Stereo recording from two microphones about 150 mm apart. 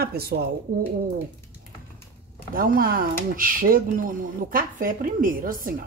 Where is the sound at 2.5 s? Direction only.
70° right (ahead or behind).